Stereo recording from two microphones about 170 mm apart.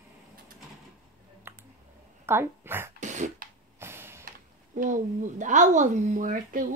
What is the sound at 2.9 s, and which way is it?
Beatboxing, 45° right (ahead or behind).